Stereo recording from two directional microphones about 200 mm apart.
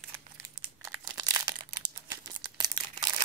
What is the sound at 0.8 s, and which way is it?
Crumpling, 15° right (ahead or behind).